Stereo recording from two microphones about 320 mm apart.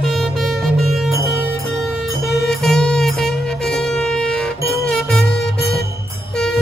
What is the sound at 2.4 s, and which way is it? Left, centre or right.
Music, centre.